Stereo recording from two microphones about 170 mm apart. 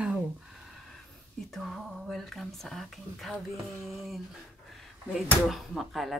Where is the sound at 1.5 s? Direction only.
Centre (ahead or behind).